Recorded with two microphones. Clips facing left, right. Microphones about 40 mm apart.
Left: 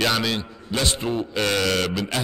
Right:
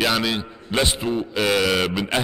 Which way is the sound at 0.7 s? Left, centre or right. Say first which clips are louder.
Right 4 dB; right.